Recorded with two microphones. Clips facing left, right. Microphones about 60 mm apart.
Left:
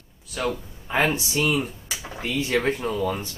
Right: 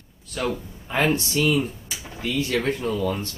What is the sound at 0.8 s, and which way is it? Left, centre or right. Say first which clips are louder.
Speech: right 1 dB; centre.